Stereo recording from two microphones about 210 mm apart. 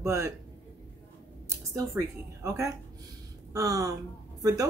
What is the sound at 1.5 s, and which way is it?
A woman's voice, 15° right (ahead or behind).